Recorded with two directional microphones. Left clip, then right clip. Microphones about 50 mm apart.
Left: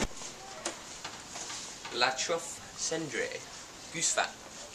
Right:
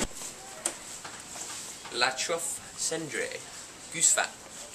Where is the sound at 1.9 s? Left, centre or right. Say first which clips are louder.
Right 1 dB; centre.